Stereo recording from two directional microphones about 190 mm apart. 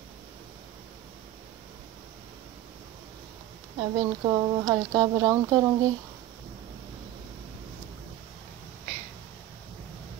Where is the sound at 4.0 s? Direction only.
20° right (ahead or behind).